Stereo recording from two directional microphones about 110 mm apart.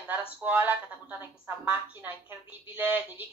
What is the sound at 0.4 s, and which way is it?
Speech, 15° right (ahead or behind).